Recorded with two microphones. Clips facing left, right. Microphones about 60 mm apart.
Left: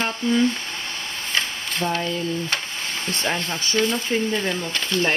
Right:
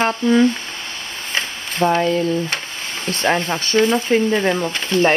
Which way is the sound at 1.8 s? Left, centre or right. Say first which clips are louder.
Right 8 dB; right.